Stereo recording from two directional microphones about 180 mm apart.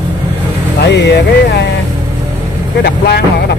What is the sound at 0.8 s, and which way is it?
Speech, 70° left (ahead or behind).